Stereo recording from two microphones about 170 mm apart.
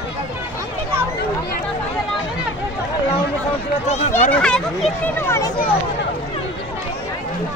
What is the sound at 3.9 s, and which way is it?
Speech, 40° left (ahead or behind).